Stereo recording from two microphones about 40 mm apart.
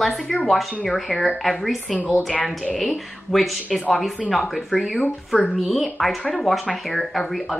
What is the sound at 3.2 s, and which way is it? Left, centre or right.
Speech, centre.